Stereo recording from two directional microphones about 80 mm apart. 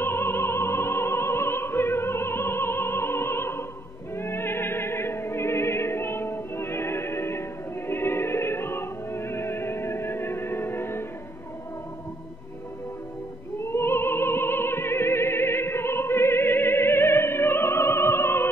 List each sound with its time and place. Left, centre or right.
0.0 s opera: left
13.7 s opera: left